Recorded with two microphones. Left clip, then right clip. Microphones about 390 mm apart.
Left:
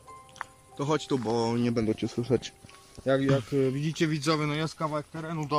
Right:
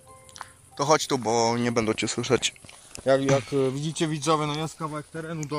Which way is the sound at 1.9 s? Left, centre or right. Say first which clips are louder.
Right 4 dB; right.